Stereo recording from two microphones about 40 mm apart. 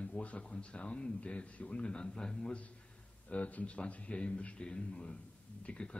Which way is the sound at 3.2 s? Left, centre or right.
Left.